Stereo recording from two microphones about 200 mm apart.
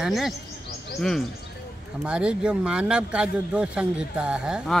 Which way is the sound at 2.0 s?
5° right (ahead or behind).